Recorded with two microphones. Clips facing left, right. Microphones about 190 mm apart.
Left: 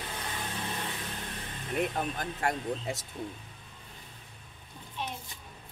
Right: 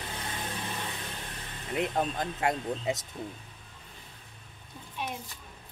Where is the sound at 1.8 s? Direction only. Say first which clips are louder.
Right 2 dB; 20° right (ahead or behind).